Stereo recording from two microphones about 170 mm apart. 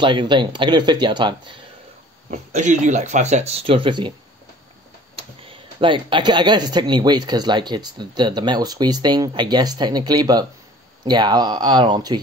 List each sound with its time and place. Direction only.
0.0 s speech: 30° right (ahead or behind)
2.3 s speech: 45° right (ahead or behind); by 4.1 s 30° right (ahead or behind)
5.1 s speech: 30° right (ahead or behind)